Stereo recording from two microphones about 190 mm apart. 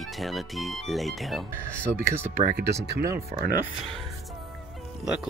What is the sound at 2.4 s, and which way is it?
Speech, 55° right (ahead or behind).